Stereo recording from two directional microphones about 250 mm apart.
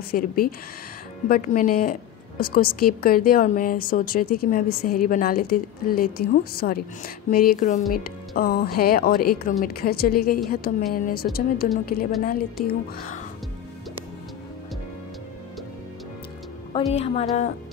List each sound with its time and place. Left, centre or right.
0.1 s a woman's voice: left
16.9 s speech: left